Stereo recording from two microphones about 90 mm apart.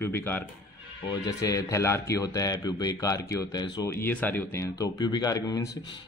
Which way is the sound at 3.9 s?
25° left (ahead or behind).